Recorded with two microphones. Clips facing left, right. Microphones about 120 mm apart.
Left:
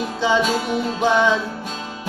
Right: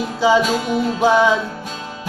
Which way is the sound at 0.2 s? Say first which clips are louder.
Right 4 dB; 5° right (ahead or behind).